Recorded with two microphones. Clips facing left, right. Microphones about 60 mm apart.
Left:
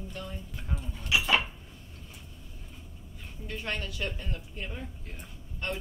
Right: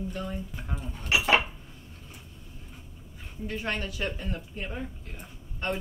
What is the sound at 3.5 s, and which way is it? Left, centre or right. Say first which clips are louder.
Speech: right 3 dB; centre.